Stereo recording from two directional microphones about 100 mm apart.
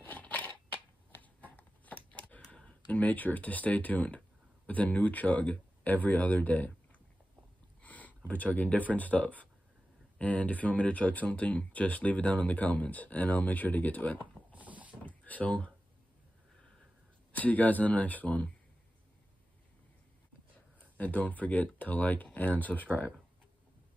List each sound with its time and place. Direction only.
0.0 s crushing: 15° left (ahead or behind)
1.2 s a sound: 15° left (ahead or behind)
4.6 s speech: 15° left (ahead or behind)
7.8 s a sound: 15° left (ahead or behind)
8.3 s speech: 15° left (ahead or behind)
14.5 s mechanisms: 15° right (ahead or behind)
15.0 s a sound: 15° left (ahead or behind)
17.3 s speech: 15° left (ahead or behind)
21.0 s speech: 15° left (ahead or behind)